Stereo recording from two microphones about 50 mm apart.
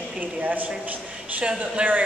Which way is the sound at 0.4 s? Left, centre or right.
Right.